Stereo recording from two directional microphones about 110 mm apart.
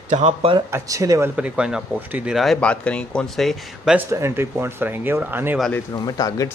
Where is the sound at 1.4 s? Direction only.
10° right (ahead or behind).